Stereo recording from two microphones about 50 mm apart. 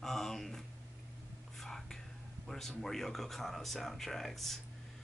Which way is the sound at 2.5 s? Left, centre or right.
Centre.